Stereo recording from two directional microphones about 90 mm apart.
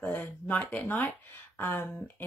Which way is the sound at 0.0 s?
20° left (ahead or behind).